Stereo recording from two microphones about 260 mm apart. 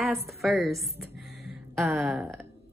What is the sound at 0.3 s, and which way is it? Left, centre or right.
Speech, centre.